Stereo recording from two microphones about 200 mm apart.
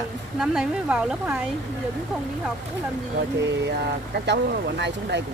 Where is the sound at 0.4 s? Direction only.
5° right (ahead or behind).